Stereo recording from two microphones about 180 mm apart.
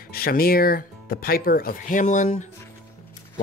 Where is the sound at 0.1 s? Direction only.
55° left (ahead or behind).